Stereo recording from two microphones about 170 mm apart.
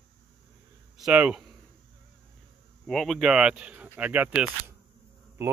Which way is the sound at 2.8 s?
Centre (ahead or behind).